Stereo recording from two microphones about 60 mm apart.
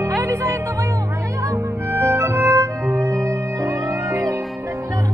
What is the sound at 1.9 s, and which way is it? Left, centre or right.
Music, right.